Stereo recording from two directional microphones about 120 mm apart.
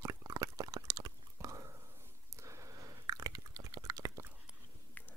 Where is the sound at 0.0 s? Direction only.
25° right (ahead or behind).